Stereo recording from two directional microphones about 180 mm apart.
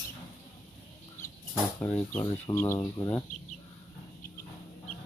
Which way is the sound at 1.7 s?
10° left (ahead or behind).